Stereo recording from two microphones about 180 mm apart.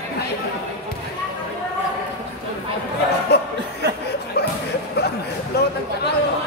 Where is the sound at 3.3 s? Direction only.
65° left (ahead or behind).